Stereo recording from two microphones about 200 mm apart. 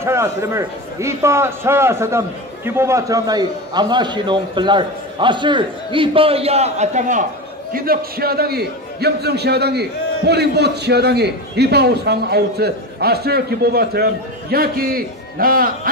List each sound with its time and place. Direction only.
0.0 s a man's voice: 15° right (ahead or behind); by 15.9 s 45° right (ahead or behind)